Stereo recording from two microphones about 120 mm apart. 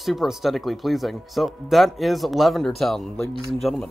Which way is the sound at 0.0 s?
Centre (ahead or behind).